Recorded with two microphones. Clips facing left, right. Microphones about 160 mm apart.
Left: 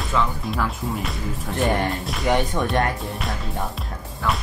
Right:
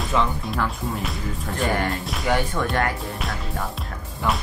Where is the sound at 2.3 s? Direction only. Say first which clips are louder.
Left 2 dB; 20° left (ahead or behind).